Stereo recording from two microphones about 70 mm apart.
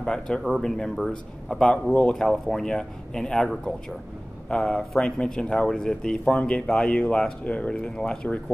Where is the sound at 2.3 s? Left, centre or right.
Centre.